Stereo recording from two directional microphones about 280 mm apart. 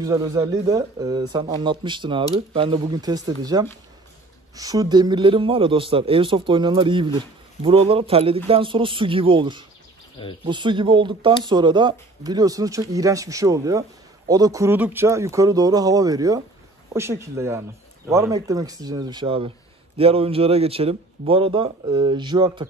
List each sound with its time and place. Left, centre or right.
0.0 s a man's voice: centre